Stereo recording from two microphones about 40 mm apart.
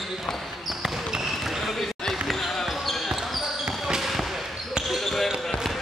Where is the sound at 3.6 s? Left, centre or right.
Centre.